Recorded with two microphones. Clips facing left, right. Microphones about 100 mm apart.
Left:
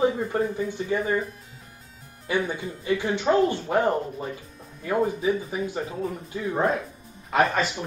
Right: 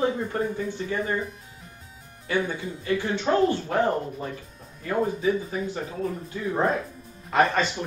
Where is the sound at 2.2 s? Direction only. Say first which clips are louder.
Even; 20° left (ahead or behind).